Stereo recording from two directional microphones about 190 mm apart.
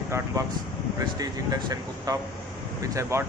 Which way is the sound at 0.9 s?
20° right (ahead or behind).